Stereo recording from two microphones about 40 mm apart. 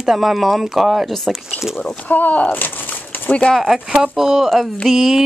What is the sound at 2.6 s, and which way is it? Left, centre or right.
Crumpling, left.